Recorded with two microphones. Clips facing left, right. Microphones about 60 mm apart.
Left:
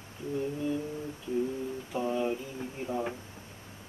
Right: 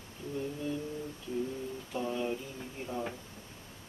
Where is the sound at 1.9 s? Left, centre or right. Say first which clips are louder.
Left 4 dB; centre.